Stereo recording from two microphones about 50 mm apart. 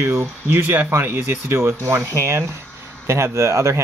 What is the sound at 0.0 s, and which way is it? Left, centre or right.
Speech, right.